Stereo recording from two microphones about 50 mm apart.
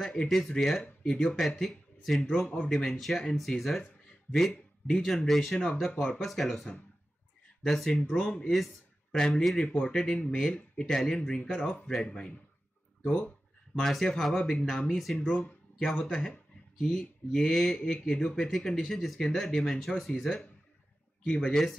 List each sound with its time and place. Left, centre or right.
0.0 s speech: centre
0.3 s speech: centre
5.1 s speech: centre
8.5 s a sound: centre
9.3 s speech: centre; by 13.3 s left
13.7 s speech: centre
15.1 s speech: left; by 17.7 s centre
17.7 s speech: centre
21.3 s speech: centre